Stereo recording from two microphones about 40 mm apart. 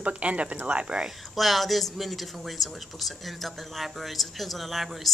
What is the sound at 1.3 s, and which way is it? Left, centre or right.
Speech, centre.